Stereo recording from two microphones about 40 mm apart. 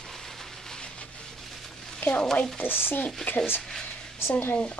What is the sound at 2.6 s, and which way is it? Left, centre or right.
Speech, left.